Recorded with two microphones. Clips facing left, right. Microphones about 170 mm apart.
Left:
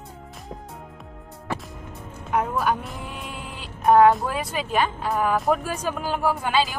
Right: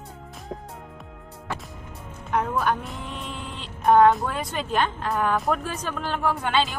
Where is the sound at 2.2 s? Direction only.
5° left (ahead or behind).